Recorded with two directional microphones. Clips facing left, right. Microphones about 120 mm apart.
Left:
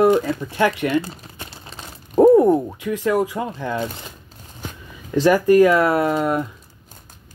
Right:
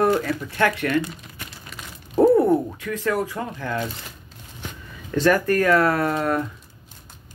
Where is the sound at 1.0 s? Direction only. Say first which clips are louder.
Left 1 dB; 35° left (ahead or behind).